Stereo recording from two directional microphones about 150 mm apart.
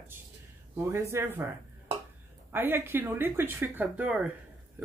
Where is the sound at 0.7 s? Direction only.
20° right (ahead or behind).